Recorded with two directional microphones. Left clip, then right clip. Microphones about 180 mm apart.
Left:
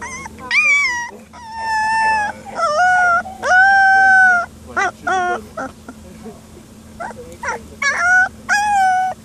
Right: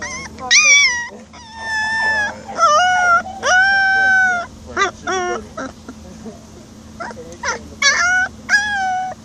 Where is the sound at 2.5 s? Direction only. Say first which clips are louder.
Right 2 dB; 10° left (ahead or behind).